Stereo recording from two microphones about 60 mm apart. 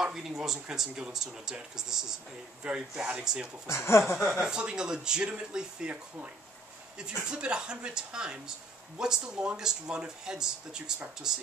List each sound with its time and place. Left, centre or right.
0.0 s speech: centre
3.6 s speech: left
4.4 s speech: centre
7.2 s speech: centre